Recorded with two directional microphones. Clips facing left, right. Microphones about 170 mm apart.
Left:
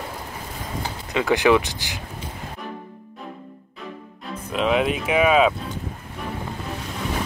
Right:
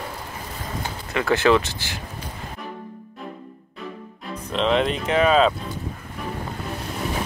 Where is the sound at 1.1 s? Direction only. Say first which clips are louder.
Left 1 dB; 15° left (ahead or behind).